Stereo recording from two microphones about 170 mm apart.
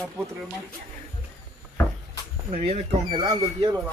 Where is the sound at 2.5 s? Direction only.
35° right (ahead or behind).